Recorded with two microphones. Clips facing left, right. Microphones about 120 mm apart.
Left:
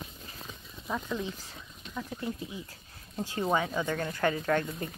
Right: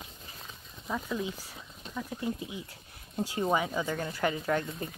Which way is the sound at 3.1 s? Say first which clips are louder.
Even; 15° right (ahead or behind).